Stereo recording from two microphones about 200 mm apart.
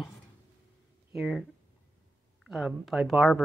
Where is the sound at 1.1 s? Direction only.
Centre (ahead or behind).